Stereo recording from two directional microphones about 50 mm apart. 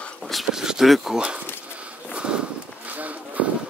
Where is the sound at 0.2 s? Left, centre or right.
Centre.